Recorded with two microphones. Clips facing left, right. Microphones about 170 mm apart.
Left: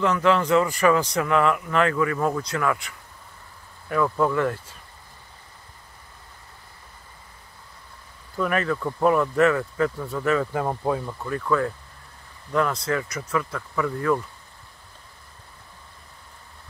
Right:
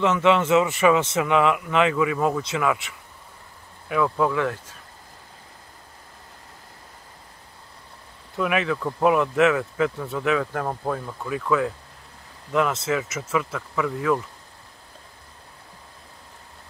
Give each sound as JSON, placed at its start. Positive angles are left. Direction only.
{"t": 0.0, "sound": "speech", "side_deg": -5}
{"t": 3.9, "sound": "speech", "side_deg": -5}
{"t": 8.4, "sound": "speech", "side_deg": -5}
{"t": 12.8, "sound": "speech", "side_deg": -5}